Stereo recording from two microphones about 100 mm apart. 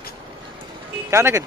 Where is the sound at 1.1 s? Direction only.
25° right (ahead or behind).